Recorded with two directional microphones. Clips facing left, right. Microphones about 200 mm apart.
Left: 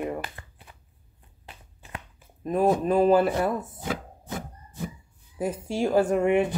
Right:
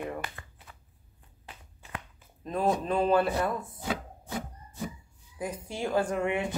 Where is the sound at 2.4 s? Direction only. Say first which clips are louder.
Left 6 dB; 15° left (ahead or behind).